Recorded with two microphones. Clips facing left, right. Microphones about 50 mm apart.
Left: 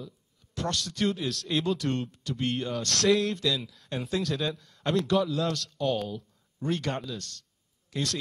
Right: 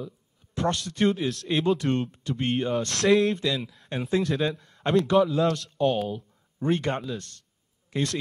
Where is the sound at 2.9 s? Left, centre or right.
Centre.